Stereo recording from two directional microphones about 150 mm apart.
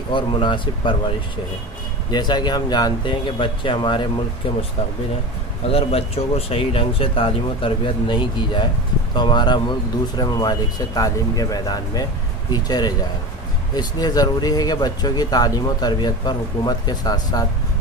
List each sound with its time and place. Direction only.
0.1 s speech: 35° left (ahead or behind)
5.7 s speech: 40° left (ahead or behind); by 17.5 s 25° left (ahead or behind)